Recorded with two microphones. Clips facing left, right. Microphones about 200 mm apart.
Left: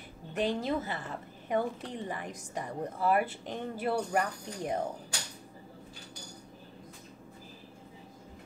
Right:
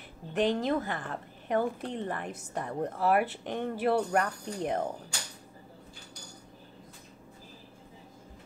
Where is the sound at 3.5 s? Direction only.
60° right (ahead or behind).